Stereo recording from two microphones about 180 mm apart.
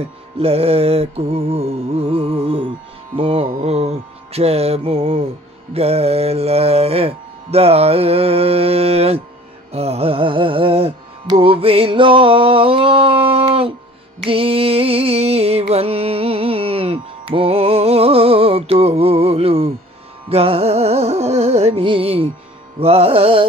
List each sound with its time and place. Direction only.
0.4 s music: 35° right (ahead or behind)